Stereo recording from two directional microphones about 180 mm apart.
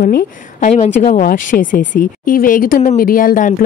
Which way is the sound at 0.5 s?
40° left (ahead or behind).